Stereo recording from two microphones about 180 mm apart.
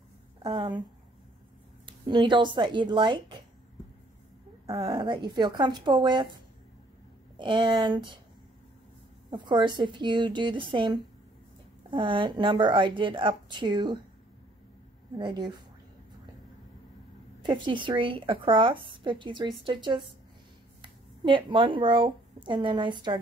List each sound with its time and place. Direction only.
0.4 s a woman's voice: 25° right (ahead or behind)
1.9 s a woman's voice: 25° right (ahead or behind)
4.7 s a woman's voice: 25° right (ahead or behind)
7.3 s a woman's voice: 25° right (ahead or behind)
9.3 s a woman's voice: 25° right (ahead or behind)
15.1 s a woman's voice: 25° right (ahead or behind)
17.4 s a woman's voice: 25° right (ahead or behind)